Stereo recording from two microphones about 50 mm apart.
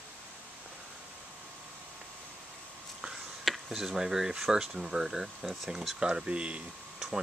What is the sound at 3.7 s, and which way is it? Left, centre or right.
Speech, centre.